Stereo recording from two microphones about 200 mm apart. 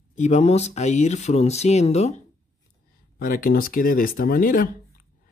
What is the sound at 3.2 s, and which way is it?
Speech, 45° left (ahead or behind).